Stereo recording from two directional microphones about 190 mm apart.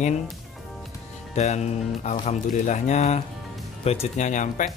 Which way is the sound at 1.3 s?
35° left (ahead or behind).